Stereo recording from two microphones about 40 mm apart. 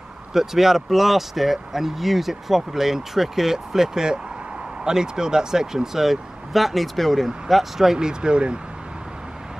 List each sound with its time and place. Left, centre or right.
0.3 s speech: centre; by 8.5 s right